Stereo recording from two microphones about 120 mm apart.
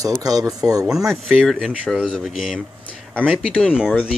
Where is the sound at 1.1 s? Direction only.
Centre (ahead or behind).